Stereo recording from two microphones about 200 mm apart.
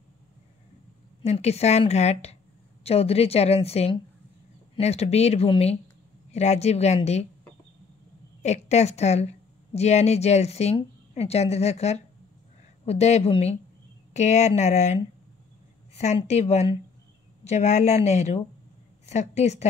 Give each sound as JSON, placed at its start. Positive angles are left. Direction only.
{"t": 1.2, "sound": "speech", "side_deg": 30}
{"t": 8.4, "sound": "speech", "side_deg": 35}